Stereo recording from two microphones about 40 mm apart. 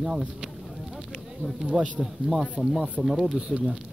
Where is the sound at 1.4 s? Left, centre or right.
Left.